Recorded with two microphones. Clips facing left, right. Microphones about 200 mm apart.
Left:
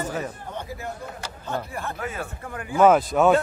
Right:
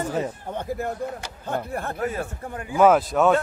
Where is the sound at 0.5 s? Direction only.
50° right (ahead or behind).